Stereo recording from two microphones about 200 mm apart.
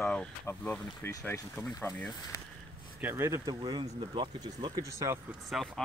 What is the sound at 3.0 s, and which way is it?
Speech, 10° right (ahead or behind).